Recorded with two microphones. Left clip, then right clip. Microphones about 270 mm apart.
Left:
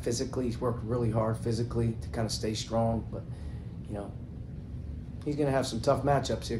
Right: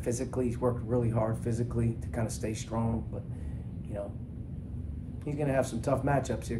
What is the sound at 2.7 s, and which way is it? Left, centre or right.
Speech, centre.